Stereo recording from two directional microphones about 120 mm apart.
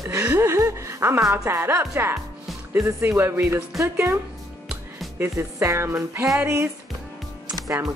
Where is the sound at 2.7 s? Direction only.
25° right (ahead or behind).